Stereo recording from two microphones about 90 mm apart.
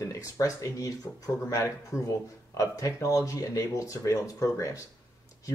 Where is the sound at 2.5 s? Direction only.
40° left (ahead or behind).